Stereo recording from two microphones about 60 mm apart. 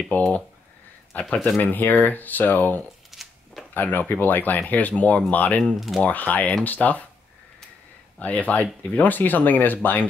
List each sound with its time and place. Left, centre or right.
0.1 s speech: left
3.1 s a sound: centre
3.7 s speech: left
5.8 s speech: centre
6.0 s speech: left
8.2 s speech: left